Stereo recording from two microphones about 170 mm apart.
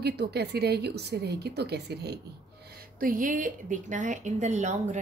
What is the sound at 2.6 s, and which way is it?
A woman's voice, 65° right (ahead or behind).